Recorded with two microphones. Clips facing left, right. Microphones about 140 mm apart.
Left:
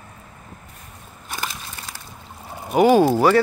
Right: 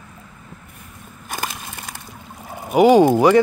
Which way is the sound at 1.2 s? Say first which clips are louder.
Right 2 dB; 45° right (ahead or behind).